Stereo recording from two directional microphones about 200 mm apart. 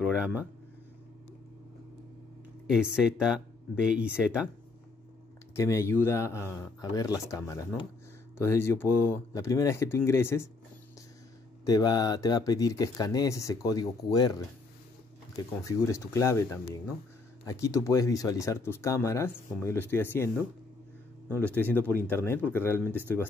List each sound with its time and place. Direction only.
0.0 s speech: 5° right (ahead or behind)
2.7 s speech: 5° right (ahead or behind)
5.6 s speech: 15° left (ahead or behind)
11.6 s speech: 20° left (ahead or behind)
15.6 s speech: 15° left (ahead or behind)
21.5 s speech: 10° left (ahead or behind)